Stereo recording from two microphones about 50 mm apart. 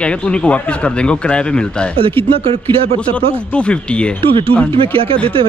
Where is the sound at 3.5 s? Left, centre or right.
Left.